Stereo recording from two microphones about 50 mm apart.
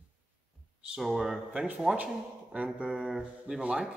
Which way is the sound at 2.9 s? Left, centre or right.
Centre.